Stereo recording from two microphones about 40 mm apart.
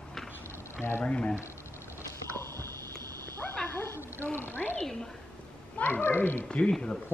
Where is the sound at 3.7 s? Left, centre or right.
Left.